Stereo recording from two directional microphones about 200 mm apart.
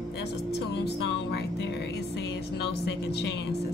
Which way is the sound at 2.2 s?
55° left (ahead or behind).